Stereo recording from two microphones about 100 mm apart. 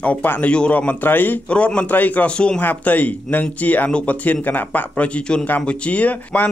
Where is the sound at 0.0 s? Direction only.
15° left (ahead or behind).